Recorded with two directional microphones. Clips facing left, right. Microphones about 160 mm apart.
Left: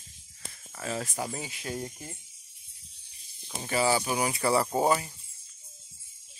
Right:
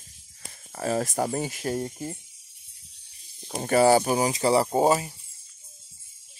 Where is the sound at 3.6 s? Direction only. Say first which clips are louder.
Right 8 dB; 50° right (ahead or behind).